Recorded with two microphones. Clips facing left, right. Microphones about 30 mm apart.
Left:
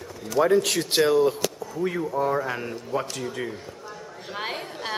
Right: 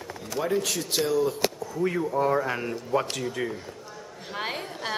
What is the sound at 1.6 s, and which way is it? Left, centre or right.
A woman's voice, centre.